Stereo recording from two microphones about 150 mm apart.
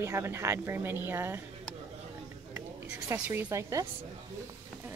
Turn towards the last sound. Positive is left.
turn(degrees=-20)  # may be behind; listen again after turning